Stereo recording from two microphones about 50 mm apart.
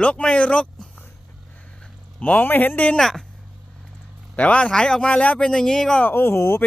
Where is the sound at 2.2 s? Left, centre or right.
Left.